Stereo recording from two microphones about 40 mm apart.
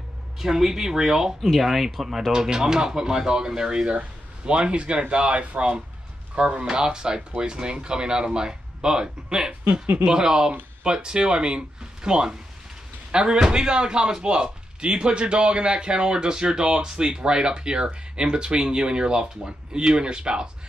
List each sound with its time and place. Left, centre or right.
0.4 s speech: centre
1.4 s speech: centre
2.3 s speech: centre